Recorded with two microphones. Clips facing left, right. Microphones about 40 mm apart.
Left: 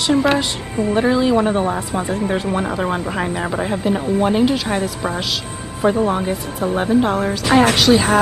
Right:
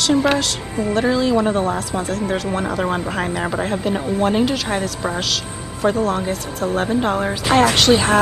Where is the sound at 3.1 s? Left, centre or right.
Centre.